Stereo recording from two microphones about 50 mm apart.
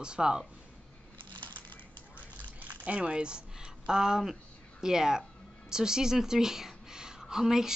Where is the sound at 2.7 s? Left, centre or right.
Right.